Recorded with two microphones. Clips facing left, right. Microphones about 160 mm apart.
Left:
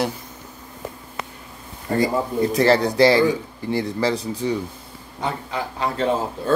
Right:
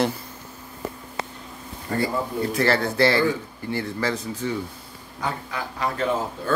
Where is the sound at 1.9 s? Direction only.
35° left (ahead or behind).